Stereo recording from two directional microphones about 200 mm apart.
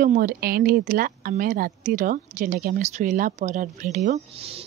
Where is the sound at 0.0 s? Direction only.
45° right (ahead or behind).